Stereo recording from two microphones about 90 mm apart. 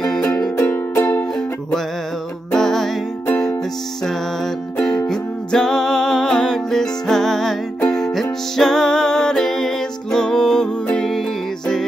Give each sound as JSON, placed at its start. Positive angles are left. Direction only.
{"t": 0.0, "sound": "music", "side_deg": 10}
{"t": 0.6, "sound": "music", "side_deg": 25}
{"t": 2.5, "sound": "music", "side_deg": 5}
{"t": 4.0, "sound": "music", "side_deg": 5}